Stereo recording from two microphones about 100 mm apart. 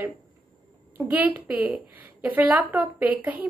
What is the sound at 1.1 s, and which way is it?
Speech, 15° right (ahead or behind).